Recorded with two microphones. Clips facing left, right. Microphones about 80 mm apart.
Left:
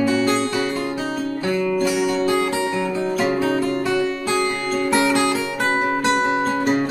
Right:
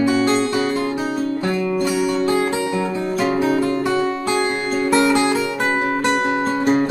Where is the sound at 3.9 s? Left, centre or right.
Right.